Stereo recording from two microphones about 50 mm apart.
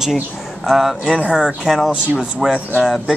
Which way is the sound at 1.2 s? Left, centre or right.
Right.